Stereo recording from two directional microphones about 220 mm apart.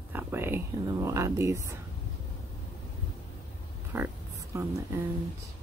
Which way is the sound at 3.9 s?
10° right (ahead or behind).